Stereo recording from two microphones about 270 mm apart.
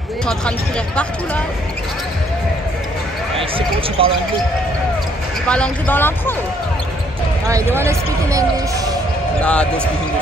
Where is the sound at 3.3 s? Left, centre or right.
Centre.